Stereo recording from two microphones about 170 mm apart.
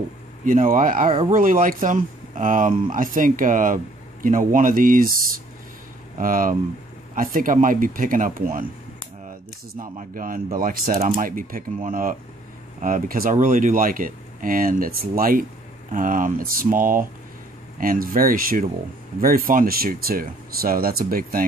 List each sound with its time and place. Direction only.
0.5 s speech: 50° right (ahead or behind)
9.8 s speech: 55° right (ahead or behind)